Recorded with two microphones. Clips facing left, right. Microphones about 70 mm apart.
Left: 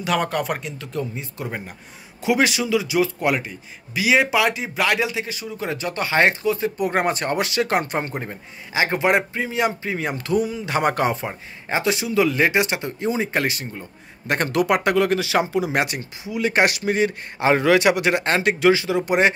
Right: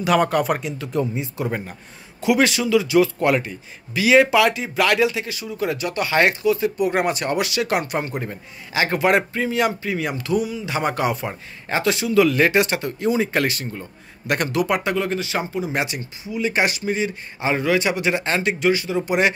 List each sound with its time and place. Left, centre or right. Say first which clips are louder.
0.0 s speech: right 4 dB; centre
0.9 s speech: right 5 dB; centre
2.2 s a man's voice: right 2 dB; left
11.2 s a man's voice: even; centre
14.2 s speech: even; left
14.5 s speech: left 5 dB; left
15.7 s speech: left 2 dB; left